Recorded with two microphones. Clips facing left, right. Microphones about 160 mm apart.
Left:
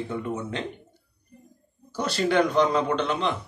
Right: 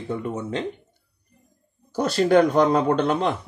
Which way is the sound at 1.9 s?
50° right (ahead or behind).